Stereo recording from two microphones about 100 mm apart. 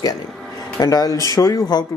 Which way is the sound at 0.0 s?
40° left (ahead or behind).